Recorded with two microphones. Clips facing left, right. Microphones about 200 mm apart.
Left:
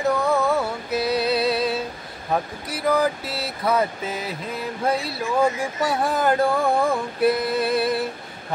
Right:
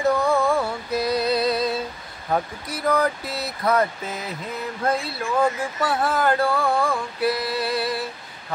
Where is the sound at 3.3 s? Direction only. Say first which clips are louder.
Even; 30° left (ahead or behind).